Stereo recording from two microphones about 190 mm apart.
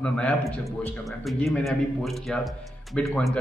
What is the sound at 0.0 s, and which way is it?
A man's voice, 5° left (ahead or behind).